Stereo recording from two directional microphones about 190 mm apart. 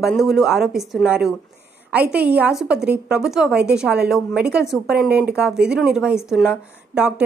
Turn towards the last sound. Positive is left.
turn(degrees=-5)  # may be behind; listen again after turning